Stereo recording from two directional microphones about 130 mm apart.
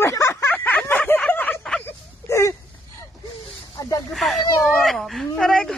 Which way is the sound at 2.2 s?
25° left (ahead or behind).